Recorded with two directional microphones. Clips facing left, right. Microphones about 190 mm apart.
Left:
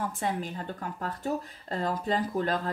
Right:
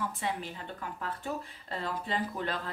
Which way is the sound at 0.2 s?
45° left (ahead or behind).